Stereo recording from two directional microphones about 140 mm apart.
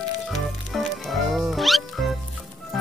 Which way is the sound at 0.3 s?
Centre (ahead or behind).